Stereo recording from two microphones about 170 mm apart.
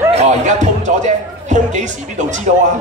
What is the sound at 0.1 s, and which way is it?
A man's voice, 40° right (ahead or behind).